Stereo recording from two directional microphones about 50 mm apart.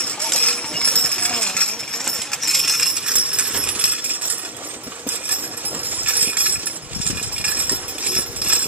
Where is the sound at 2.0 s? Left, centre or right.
Centre.